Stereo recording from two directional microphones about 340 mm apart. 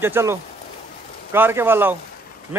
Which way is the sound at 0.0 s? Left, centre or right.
Centre.